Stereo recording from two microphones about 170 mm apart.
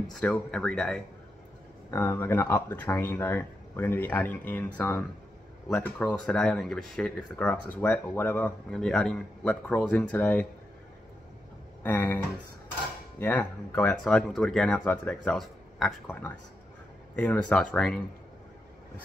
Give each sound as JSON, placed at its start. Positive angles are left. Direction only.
{"t": 0.1, "sound": "speech", "side_deg": 5}
{"t": 11.8, "sound": "speech", "side_deg": 10}
{"t": 13.2, "sound": "speech", "side_deg": 10}
{"t": 17.1, "sound": "speech", "side_deg": 10}